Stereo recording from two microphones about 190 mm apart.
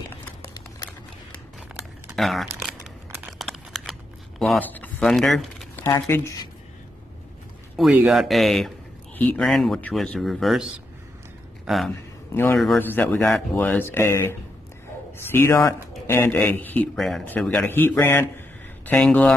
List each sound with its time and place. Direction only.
0.1 s a sound: 10° left (ahead or behind)
2.1 s crumpling: centre (ahead or behind)
4.4 s speech: 5° left (ahead or behind)
5.8 s speech: 15° left (ahead or behind)
7.7 s a man's voice: centre (ahead or behind)
12.7 s a man's voice: 10° left (ahead or behind)
15.3 s a man's voice: 15° left (ahead or behind)